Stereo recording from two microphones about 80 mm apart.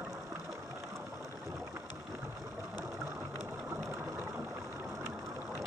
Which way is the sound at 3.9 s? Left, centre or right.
Right.